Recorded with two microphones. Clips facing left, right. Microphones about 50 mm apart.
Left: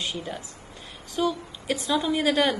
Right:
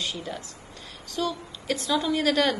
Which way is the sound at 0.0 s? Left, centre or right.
Centre.